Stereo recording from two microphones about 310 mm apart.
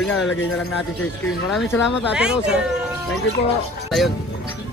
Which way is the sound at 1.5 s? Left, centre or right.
Centre.